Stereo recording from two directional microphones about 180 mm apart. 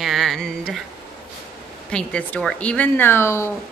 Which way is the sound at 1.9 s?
5° left (ahead or behind).